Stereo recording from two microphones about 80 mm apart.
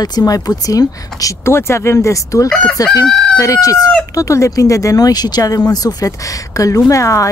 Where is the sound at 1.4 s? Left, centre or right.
Left.